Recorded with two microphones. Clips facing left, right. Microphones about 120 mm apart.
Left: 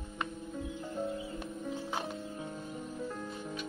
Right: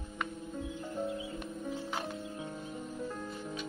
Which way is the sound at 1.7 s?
20° left (ahead or behind).